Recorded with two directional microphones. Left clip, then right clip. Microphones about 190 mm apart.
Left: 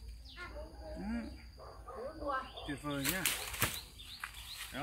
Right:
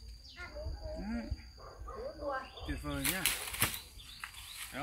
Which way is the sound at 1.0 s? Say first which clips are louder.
Left 1 dB; 20° right (ahead or behind).